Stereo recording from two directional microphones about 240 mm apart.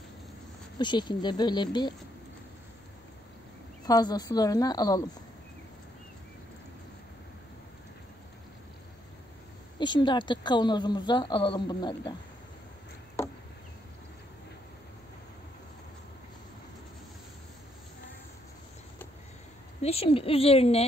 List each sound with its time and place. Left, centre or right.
0.7 s speech: centre
3.8 s speech: centre
9.8 s speech: centre
13.2 s chop: centre
19.8 s speech: left